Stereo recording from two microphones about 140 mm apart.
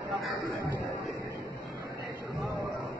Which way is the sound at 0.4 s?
20° right (ahead or behind).